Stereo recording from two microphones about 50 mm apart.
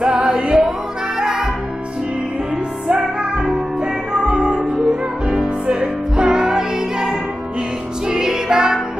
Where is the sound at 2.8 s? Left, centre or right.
Centre.